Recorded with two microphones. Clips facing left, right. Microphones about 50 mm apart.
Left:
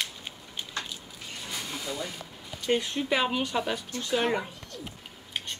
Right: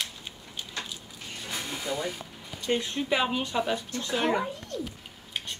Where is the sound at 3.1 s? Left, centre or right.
Centre.